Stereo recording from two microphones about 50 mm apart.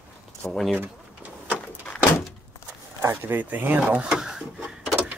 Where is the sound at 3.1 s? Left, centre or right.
Right.